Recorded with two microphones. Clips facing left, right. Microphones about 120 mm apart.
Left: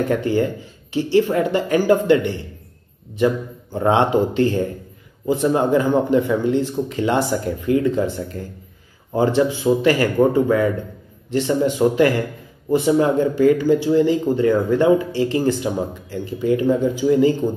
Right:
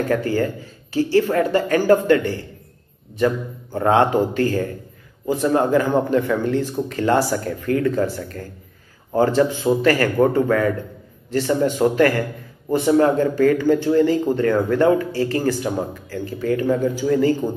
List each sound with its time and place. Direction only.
0.1 s speech: 20° left (ahead or behind)
3.7 s speech: 20° left (ahead or behind)